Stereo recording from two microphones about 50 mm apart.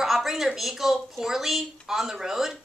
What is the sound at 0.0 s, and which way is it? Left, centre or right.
Speech, centre.